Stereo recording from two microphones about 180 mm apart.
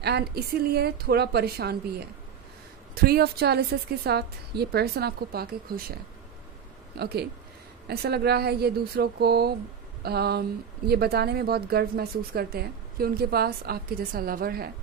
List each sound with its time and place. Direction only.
0.0 s speech: 65° right (ahead or behind)
7.0 s speech: 60° right (ahead or behind)